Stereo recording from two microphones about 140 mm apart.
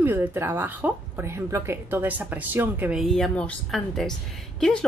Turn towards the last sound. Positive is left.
turn(degrees=5)  # may be behind; listen again after turning